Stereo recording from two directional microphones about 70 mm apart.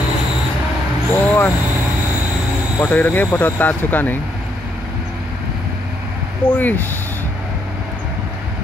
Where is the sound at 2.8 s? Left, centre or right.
Left.